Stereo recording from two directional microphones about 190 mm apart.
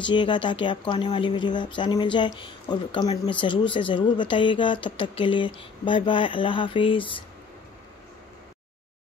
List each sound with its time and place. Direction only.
0.0 s speech: 25° left (ahead or behind)